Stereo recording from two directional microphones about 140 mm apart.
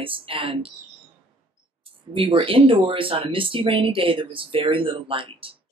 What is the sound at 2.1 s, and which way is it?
Speech, 40° right (ahead or behind).